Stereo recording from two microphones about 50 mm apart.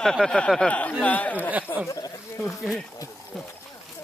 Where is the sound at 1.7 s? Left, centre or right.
Left.